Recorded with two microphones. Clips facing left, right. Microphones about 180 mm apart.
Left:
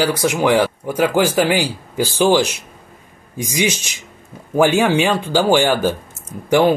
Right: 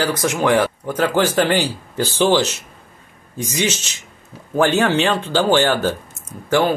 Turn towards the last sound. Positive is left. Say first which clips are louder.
# left 3 dB
turn(degrees=20)  # may be behind; listen again after turning